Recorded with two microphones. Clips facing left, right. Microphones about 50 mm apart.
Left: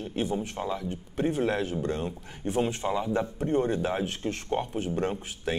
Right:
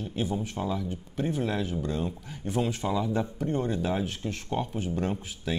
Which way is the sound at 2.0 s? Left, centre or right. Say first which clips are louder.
Left 1 dB; left.